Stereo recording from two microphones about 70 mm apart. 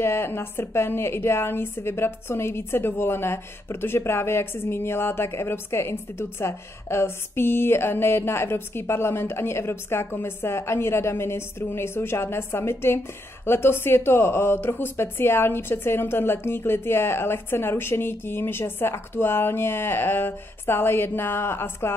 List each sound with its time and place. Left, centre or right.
0.0 s a woman's voice: left